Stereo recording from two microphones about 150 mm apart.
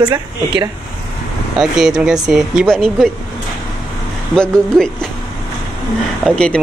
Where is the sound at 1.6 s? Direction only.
5° right (ahead or behind).